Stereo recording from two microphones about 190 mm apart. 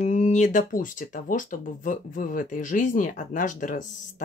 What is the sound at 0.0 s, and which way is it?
Speech, 40° left (ahead or behind).